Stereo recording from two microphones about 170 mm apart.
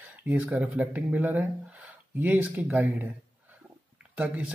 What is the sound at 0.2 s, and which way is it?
Speech, 10° right (ahead or behind).